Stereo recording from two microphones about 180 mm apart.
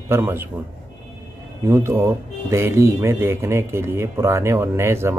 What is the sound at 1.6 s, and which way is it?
A man's voice, 15° right (ahead or behind).